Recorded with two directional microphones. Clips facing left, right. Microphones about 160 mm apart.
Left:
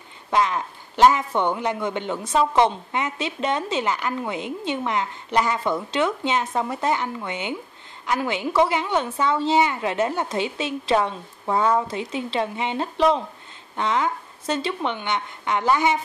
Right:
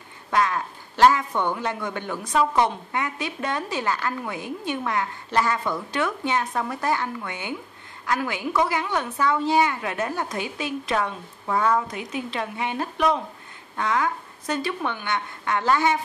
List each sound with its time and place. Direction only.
0.3 s a man's voice: 20° left (ahead or behind)